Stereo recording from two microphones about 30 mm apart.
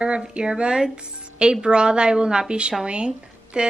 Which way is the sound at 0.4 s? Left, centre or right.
Right.